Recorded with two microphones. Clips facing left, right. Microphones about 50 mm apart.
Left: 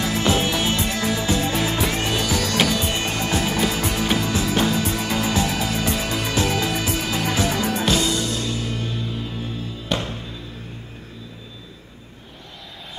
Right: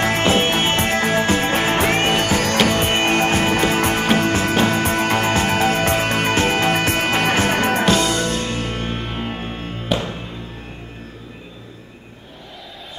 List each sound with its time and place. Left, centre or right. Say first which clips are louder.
0.0 s music: right 4 dB; right
9.8 s music: right 3 dB; centre